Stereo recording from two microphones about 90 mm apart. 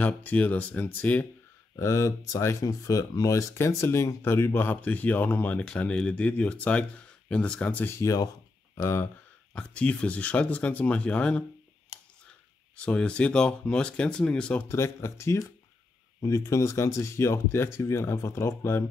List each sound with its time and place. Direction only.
0.0 s speech: 15° left (ahead or behind)
1.8 s speech: 35° left (ahead or behind); by 7.9 s 15° left (ahead or behind)
7.9 s speech: 35° left (ahead or behind)
9.5 s speech: 15° left (ahead or behind)
12.7 s speech: 15° left (ahead or behind)
14.7 s speech: 30° left (ahead or behind)